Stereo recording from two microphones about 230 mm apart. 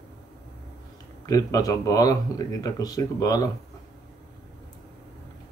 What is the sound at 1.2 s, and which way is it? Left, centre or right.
Speech, centre.